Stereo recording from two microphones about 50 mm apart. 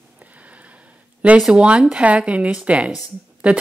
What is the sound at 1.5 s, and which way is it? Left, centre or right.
A woman's voice, right.